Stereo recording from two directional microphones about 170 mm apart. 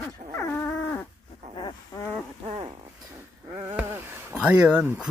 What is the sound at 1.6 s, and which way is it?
Wild animals, 20° left (ahead or behind).